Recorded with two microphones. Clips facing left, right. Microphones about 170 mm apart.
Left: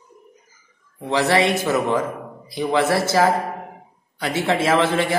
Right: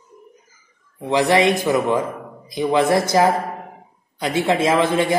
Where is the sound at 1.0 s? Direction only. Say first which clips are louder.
Right 2 dB; 15° right (ahead or behind).